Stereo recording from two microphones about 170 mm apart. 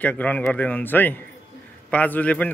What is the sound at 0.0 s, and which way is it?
Speech, 10° left (ahead or behind).